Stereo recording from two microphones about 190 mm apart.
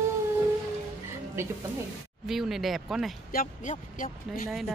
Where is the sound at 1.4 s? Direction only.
15° right (ahead or behind).